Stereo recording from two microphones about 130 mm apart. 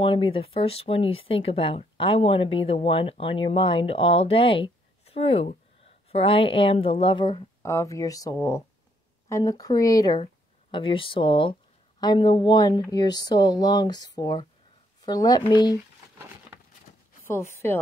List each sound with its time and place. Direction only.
0.0 s speech: 45° left (ahead or behind)
7.6 s speech: 25° left (ahead or behind)
10.2 s speech: 40° left (ahead or behind)
16.9 s a sound: 70° left (ahead or behind)
17.3 s speech: 20° left (ahead or behind)